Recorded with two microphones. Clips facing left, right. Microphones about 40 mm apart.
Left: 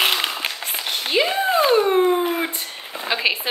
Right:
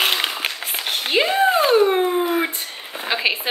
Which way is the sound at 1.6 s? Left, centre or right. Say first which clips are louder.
Even; centre.